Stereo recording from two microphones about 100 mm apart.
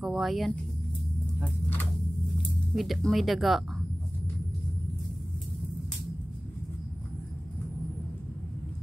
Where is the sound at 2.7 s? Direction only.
Centre (ahead or behind).